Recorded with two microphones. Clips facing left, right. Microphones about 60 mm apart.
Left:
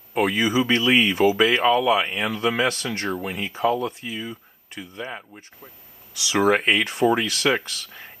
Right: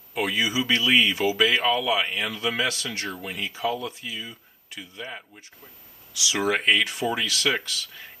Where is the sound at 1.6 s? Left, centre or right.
Left.